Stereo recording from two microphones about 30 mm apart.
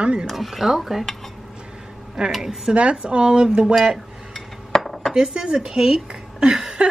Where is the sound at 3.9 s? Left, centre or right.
Centre.